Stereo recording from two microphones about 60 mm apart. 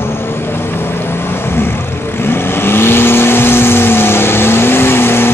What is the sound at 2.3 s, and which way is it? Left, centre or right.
Vehicle, left.